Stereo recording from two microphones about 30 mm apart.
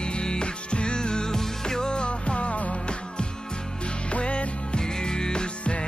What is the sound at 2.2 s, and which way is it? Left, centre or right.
Music, left.